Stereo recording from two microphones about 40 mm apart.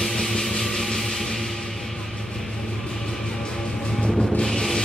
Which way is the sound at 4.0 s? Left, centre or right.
Left.